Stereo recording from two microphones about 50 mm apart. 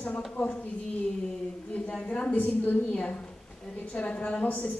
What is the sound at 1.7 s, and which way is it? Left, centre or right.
Speech, left.